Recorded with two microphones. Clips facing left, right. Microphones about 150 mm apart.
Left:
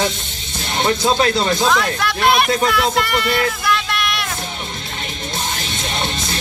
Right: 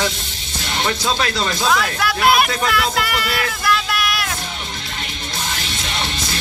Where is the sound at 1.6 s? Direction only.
5° right (ahead or behind).